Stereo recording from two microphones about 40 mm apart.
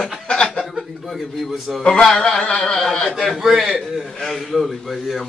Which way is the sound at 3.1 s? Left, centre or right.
Centre.